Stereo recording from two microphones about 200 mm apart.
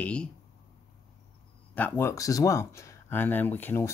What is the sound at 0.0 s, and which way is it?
Speech, 5° left (ahead or behind).